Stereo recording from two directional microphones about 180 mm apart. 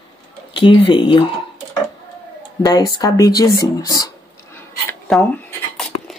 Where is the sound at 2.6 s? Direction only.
20° left (ahead or behind).